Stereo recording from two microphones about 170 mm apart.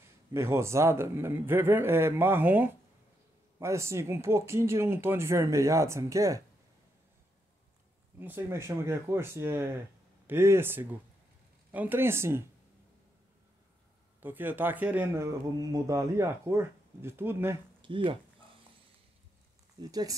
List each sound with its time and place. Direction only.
0.3 s speech: 15° right (ahead or behind)
8.2 s speech: 10° right (ahead or behind)
14.2 s speech: 10° right (ahead or behind)
17.8 s speech: 30° right (ahead or behind)
19.8 s speech: 20° right (ahead or behind)